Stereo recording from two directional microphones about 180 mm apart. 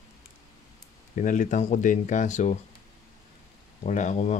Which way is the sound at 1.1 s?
40° left (ahead or behind).